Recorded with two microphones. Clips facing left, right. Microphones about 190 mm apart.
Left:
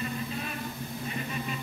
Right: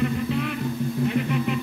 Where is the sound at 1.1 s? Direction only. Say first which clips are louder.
Right 8 dB; 70° right (ahead or behind).